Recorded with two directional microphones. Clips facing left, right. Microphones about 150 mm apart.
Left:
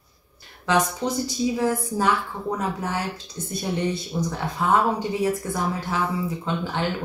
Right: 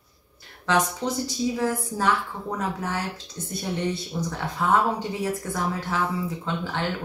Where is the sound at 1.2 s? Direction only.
15° left (ahead or behind).